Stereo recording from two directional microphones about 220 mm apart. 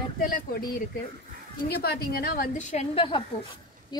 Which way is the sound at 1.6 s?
45° left (ahead or behind).